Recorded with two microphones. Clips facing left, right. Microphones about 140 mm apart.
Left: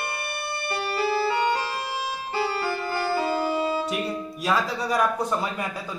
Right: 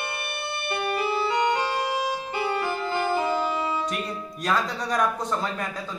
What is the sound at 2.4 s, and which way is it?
Music, 20° right (ahead or behind).